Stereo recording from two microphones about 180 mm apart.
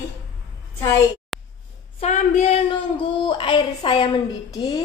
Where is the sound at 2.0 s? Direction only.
40° left (ahead or behind).